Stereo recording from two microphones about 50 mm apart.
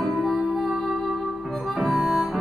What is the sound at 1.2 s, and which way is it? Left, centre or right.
Harmonica, centre.